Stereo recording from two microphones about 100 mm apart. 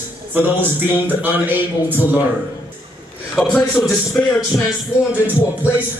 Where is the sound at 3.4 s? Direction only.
10° left (ahead or behind).